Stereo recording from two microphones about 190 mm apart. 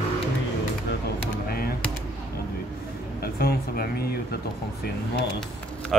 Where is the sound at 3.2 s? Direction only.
55° left (ahead or behind).